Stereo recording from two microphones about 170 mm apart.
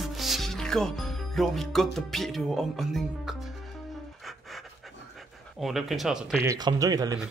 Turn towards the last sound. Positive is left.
turn(degrees=-20)  # may be behind; listen again after turning